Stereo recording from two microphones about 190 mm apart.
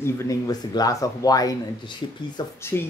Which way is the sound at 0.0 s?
15° left (ahead or behind).